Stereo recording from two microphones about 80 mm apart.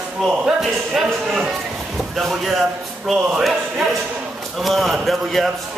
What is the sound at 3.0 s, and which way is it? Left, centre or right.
A man's voice, centre.